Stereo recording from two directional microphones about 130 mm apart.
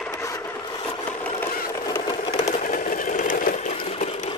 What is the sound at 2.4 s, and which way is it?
Sewing machine, 75° left (ahead or behind).